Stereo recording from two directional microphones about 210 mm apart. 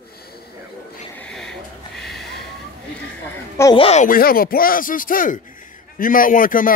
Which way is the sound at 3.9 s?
35° left (ahead or behind).